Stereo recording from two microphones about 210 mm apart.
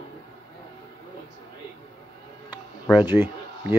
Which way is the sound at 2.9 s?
5° right (ahead or behind).